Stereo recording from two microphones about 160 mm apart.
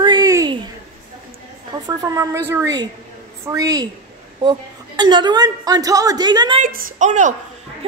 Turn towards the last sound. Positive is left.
turn(degrees=-50)  # may be behind; listen again after turning